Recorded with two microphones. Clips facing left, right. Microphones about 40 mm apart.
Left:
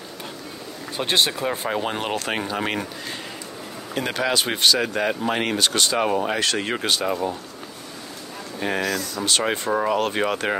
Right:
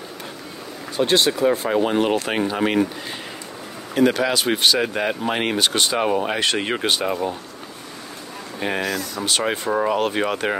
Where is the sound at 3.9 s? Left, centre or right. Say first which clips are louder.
Right 5 dB; centre.